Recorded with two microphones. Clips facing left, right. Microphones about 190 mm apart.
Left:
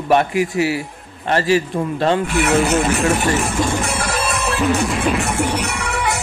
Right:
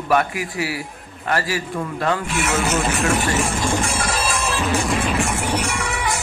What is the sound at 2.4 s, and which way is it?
Speech, 60° left (ahead or behind).